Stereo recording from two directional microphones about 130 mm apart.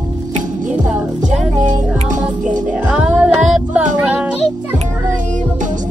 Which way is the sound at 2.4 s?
75° right (ahead or behind).